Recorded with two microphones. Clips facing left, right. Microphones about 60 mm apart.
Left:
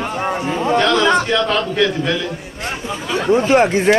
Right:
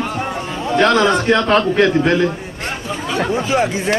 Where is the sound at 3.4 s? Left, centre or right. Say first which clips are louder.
Left 4 dB; left.